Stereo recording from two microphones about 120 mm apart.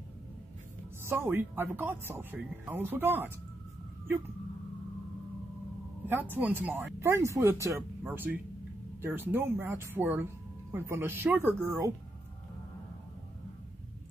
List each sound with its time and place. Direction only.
1.0 s speech: 20° right (ahead or behind)
6.3 s speech: 15° right (ahead or behind)